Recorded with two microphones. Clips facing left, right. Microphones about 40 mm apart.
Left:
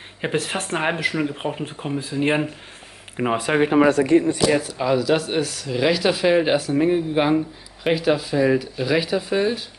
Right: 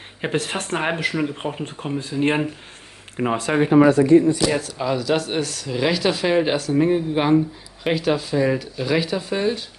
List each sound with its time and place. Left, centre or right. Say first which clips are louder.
0.2 s speech: even; centre
3.6 s speech: right 3 dB; left
3.9 s speech: right 3 dB; left
4.5 s speech: left 3 dB; centre